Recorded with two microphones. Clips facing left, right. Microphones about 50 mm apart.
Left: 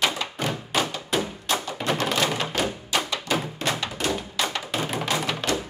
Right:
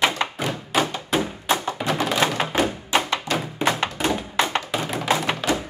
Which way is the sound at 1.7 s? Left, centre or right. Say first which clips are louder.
Right 2 dB; centre.